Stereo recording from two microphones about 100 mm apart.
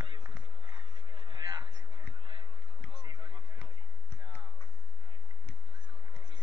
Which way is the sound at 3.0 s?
55° right (ahead or behind).